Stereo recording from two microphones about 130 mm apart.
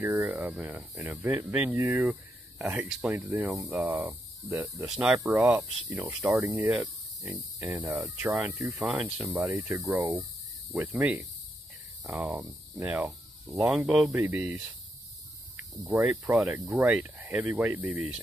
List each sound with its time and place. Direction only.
0.0 s speech: 5° right (ahead or behind)
4.8 s speech: 5° right (ahead or behind)
7.9 s speech: centre (ahead or behind)
8.5 s speech: 20° right (ahead or behind)
8.7 s speech: 10° right (ahead or behind)
9.6 s speech: 20° right (ahead or behind); by 14.1 s 5° right (ahead or behind)
14.1 s speech: 15° right (ahead or behind)
15.9 s speech: 10° right (ahead or behind)